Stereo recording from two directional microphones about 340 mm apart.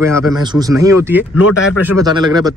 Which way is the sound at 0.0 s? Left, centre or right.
Centre.